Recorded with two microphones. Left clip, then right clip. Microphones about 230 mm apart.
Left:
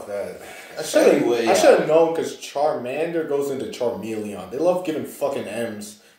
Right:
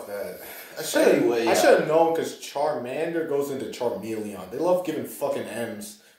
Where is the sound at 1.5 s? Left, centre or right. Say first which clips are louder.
Left 4 dB; centre.